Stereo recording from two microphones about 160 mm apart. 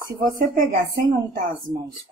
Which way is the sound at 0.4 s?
60° right (ahead or behind).